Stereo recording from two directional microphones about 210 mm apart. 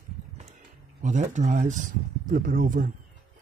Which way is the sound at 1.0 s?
35° right (ahead or behind).